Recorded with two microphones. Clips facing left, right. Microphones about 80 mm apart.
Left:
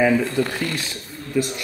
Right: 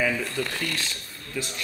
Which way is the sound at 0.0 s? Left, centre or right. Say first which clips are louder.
Left 8 dB; left.